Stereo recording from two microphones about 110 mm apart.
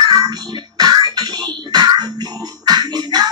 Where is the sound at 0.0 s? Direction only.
35° right (ahead or behind).